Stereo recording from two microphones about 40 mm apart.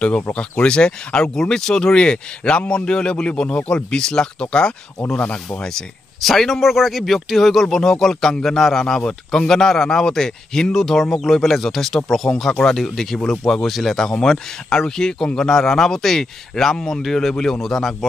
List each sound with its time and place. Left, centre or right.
0.0 s speech: left
6.2 s speech: centre
9.0 s speech: left
9.5 s speech: centre